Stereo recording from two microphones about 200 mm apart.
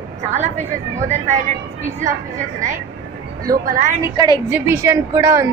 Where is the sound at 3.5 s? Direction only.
40° right (ahead or behind).